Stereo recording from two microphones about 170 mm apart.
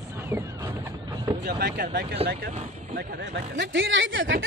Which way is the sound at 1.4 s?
75° right (ahead or behind).